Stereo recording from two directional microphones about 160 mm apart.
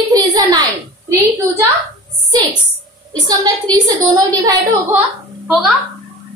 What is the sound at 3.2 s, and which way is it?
A woman's voice, 25° right (ahead or behind).